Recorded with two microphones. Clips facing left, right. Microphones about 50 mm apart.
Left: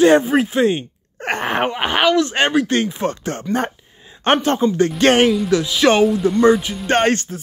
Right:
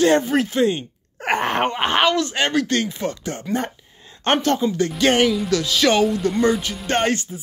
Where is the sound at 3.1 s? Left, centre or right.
Left.